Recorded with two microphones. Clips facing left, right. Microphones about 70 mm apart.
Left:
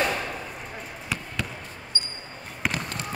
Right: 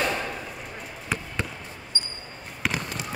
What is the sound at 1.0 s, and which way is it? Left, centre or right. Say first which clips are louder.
Basketball bounce: right 3 dB; right.